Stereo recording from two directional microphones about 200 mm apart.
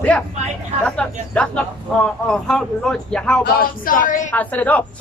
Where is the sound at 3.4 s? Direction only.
45° left (ahead or behind).